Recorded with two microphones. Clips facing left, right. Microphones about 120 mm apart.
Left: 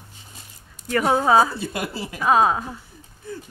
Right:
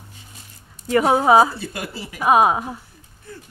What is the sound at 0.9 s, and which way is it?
A woman's voice, 20° right (ahead or behind).